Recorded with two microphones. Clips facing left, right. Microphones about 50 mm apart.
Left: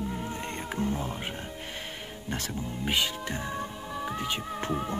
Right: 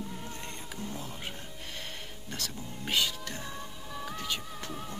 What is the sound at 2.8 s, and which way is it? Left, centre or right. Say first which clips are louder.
Speech: left 2 dB; centre.